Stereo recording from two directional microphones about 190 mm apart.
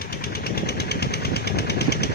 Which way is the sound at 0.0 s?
55° left (ahead or behind).